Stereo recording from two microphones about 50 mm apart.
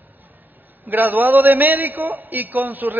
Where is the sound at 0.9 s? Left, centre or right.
Right.